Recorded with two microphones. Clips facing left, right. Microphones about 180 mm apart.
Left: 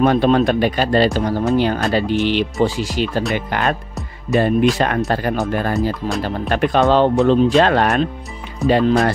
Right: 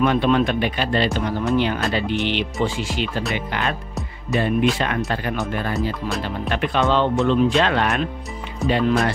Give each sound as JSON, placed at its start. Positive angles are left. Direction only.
{"t": 0.0, "sound": "speech", "side_deg": 40}